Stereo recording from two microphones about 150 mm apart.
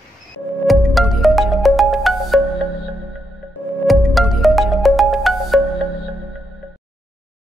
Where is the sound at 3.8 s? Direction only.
Centre (ahead or behind).